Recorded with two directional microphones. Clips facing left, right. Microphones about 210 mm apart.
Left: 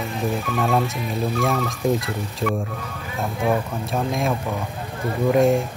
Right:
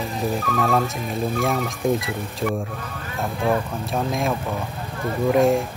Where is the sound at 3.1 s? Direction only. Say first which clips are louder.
Even; centre (ahead or behind).